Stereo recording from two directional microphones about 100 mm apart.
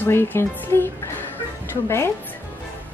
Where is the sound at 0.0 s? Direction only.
20° left (ahead or behind).